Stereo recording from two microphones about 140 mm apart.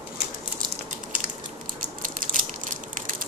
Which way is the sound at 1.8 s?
80° right.